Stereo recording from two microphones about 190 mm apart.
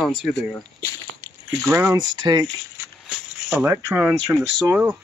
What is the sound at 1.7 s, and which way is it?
Speech, 15° right (ahead or behind).